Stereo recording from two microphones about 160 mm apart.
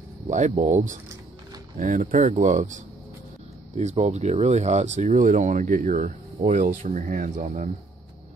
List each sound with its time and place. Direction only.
0.3 s speech: 50° right (ahead or behind)